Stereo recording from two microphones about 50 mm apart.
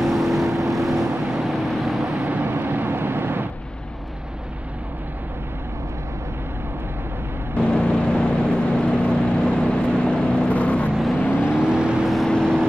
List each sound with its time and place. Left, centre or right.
0.0 s vehicle: centre
2.1 s vehicle: right
2.4 s vehicle: right
7.5 s vehicle: left
11.1 s vehicle: left
11.5 s vehicle: centre
12.3 s vehicle: centre